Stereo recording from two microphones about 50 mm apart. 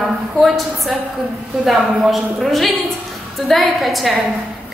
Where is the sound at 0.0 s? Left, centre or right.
Centre.